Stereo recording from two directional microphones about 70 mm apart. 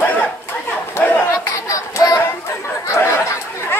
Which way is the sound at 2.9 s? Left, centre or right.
Left.